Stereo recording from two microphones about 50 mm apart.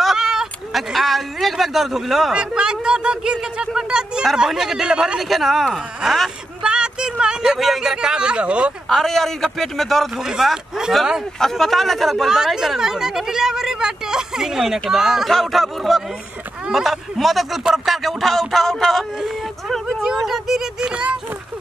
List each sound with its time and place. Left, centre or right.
0.0 s a sound: centre
0.7 s speech: centre
2.3 s speech: centre
5.3 s speech: centre
6.6 s speech: centre
8.8 s speech: centre
10.1 s speech: centre
12.3 s speech: centre
15.3 s speech: centre
20.2 s speech: centre
20.9 s speech: right